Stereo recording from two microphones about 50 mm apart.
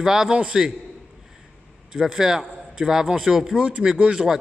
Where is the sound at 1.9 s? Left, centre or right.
Centre.